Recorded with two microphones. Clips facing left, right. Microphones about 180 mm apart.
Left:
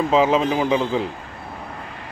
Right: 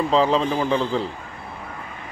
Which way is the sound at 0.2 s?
15° left (ahead or behind).